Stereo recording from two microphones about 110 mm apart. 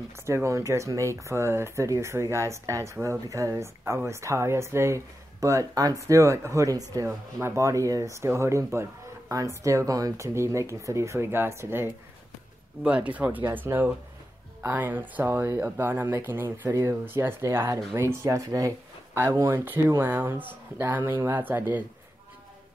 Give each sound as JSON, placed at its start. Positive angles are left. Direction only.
{"t": 0.1, "sound": "speech", "side_deg": -25}
{"t": 12.8, "sound": "speech", "side_deg": -10}